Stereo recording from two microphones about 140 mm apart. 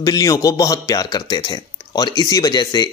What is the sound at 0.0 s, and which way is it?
Speech, 25° left (ahead or behind).